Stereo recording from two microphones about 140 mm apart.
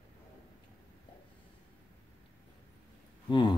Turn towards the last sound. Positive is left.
turn(degrees=35)  # may be behind; listen again after turning